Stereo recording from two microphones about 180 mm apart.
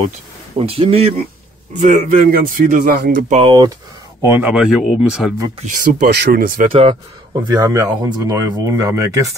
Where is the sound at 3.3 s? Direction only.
25° right (ahead or behind).